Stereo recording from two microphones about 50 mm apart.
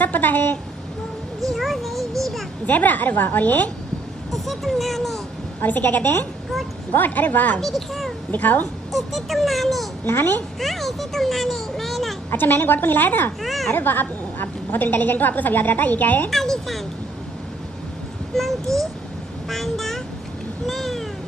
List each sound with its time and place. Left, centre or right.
0.0 s speech: left
1.5 s a sound: centre
2.6 s a woman's voice: left
4.3 s speech: centre
5.6 s a woman's voice: left
7.6 s a child's voice: centre
8.3 s a woman's voice: left
8.9 s a child's voice: centre
12.3 s a woman's voice: left
13.4 s children playing: centre
13.7 s a woman's voice: left
16.3 s a sound: centre
18.7 s a child's voice: centre
20.6 s cat: centre